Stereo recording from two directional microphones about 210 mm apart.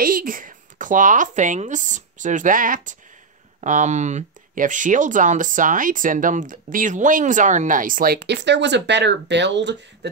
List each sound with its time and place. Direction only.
0.0 s speech: 40° right (ahead or behind)